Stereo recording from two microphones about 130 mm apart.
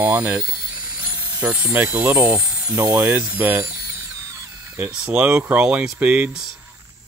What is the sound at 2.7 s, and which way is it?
Speech, 15° right (ahead or behind).